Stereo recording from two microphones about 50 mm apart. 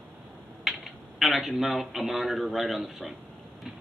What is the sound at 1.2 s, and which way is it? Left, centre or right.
Speech, centre.